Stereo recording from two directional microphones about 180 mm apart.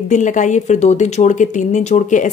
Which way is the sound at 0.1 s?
45° left (ahead or behind).